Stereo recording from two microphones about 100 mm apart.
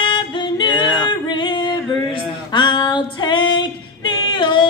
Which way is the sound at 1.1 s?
50° left (ahead or behind).